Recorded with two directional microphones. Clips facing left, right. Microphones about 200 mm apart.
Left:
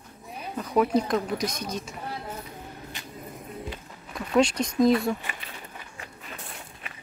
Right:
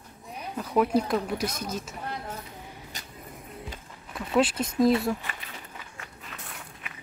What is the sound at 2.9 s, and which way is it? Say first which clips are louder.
Music: left 2 dB; 40° right (ahead or behind).